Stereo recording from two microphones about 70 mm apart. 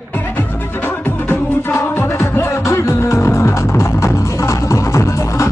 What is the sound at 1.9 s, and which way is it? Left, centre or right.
Music, left.